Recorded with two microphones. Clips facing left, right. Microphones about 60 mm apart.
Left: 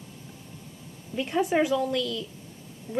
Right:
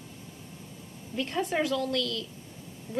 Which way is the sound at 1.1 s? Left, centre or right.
Centre.